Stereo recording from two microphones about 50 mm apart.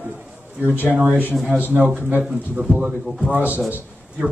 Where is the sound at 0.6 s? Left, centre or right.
Left.